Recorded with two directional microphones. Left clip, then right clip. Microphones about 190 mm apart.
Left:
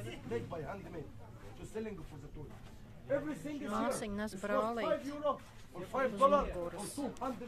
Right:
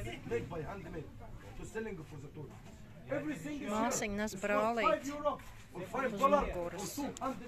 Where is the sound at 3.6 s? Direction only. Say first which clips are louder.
Right 2 dB; 10° right (ahead or behind).